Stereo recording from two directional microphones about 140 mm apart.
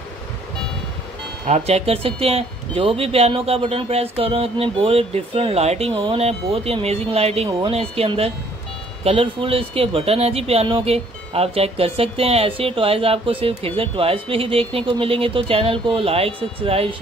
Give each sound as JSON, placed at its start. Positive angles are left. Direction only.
{"t": 1.5, "sound": "speech", "side_deg": -45}